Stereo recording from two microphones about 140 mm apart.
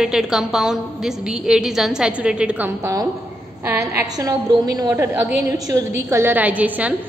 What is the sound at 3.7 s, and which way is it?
A woman's voice, 15° right (ahead or behind).